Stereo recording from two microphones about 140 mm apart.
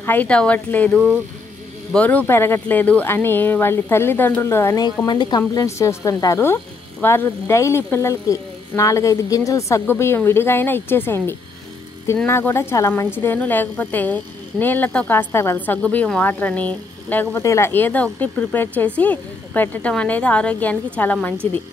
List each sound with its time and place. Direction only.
0.0 s a woman's voice: 10° left (ahead or behind)
5.0 s a woman's voice: 30° left (ahead or behind); by 21.3 s 10° left (ahead or behind)